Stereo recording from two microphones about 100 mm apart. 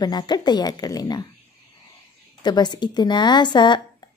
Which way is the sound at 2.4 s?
45° left (ahead or behind).